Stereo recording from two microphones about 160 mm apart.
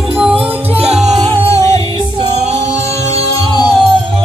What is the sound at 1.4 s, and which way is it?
Music, 20° left (ahead or behind).